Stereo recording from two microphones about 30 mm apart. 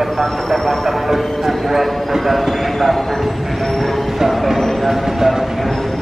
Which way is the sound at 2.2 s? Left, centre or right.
Centre.